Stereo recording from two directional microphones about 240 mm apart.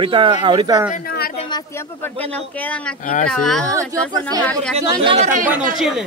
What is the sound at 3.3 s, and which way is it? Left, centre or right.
Speech, centre.